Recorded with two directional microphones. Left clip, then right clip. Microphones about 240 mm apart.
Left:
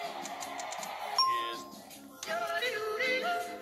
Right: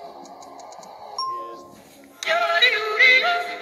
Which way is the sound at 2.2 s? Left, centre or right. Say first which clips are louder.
Right 15 dB; right.